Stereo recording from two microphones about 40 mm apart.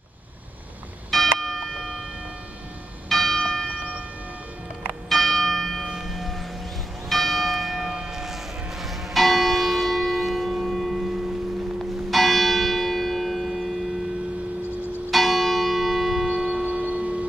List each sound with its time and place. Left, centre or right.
1.1 s music: centre
3.1 s church bell: centre
5.1 s church bell: centre
5.9 s church bell: centre
6.1 s church bell: centre
7.7 s church bell: centre
15.0 s church bell: centre
16.4 s music: right